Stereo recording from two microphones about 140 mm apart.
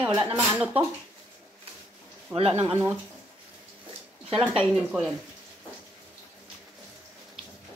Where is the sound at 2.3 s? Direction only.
45° right (ahead or behind).